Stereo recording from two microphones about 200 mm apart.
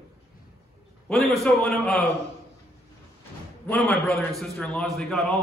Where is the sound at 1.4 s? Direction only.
5° left (ahead or behind).